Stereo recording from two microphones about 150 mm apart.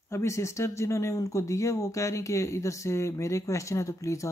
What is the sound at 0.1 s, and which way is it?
Speech, 20° left (ahead or behind).